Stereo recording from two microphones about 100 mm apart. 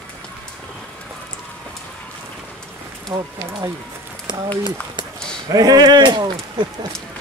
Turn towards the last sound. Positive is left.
turn(degrees=-50)  # may be behind; listen again after turning